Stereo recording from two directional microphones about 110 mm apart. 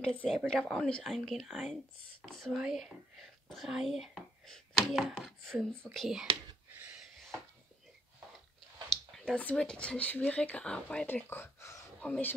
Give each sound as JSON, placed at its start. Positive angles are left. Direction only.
{"t": 0.0, "sound": "speech", "side_deg": 10}
{"t": 8.8, "sound": "speech", "side_deg": 5}
{"t": 11.2, "sound": "speech", "side_deg": 20}